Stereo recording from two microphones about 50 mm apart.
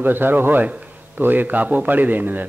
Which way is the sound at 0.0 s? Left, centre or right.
Right.